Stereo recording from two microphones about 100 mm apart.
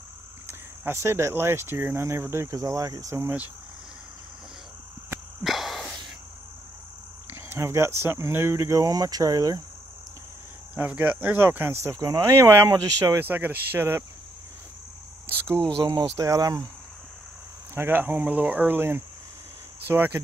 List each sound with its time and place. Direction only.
0.5 s speech: 25° right (ahead or behind)
5.4 s a sound: centre (ahead or behind)
7.3 s speech: 25° right (ahead or behind)
10.7 s speech: 15° right (ahead or behind); by 13.2 s 30° right (ahead or behind)
13.2 s speech: 20° right (ahead or behind)
15.8 s speech: 40° right (ahead or behind)
17.7 s speech: 20° right (ahead or behind)